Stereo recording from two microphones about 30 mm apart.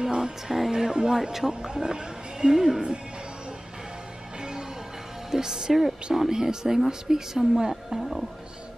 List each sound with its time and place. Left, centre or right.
0.0 s music: right
0.7 s speech: right
1.5 s speech: right
2.5 s speech: centre
4.4 s music: right
5.3 s speech: centre
8.0 s speech: centre